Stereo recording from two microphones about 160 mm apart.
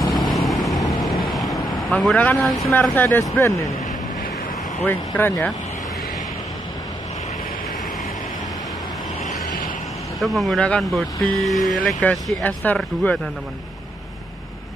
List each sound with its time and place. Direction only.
0.1 s vehicle: centre (ahead or behind)
0.7 s vehicle: 25° left (ahead or behind)
1.3 s vehicle: centre (ahead or behind)
2.7 s speech: 10° left (ahead or behind)
4.8 s speech: 10° left (ahead or behind)
10.2 s speech: centre (ahead or behind)